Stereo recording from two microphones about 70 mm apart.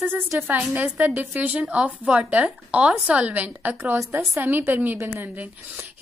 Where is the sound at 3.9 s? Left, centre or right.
Right.